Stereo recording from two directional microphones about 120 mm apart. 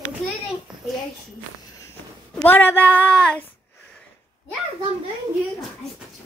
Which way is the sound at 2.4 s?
15° left (ahead or behind).